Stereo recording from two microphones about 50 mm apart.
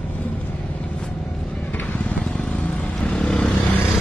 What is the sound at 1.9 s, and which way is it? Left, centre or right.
Vehicle, left.